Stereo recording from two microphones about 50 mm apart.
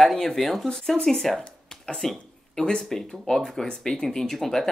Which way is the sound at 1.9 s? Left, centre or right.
Centre.